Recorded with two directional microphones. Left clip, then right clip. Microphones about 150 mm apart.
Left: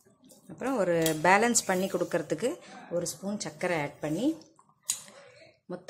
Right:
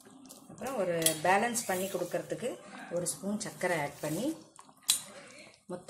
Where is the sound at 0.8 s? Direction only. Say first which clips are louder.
Left 4 dB; 55° left (ahead or behind).